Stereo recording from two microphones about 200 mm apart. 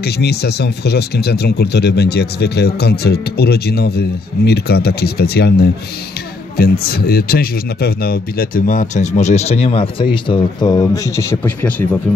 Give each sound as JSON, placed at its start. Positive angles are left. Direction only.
{"t": 0.0, "sound": "speech", "side_deg": 55}